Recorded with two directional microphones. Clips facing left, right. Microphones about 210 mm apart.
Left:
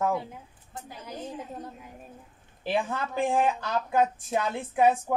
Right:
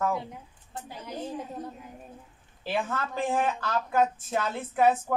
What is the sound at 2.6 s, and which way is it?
Speech, 15° left (ahead or behind).